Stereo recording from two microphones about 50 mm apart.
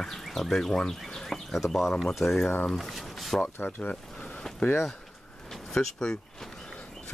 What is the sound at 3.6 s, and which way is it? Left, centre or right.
Speech, left.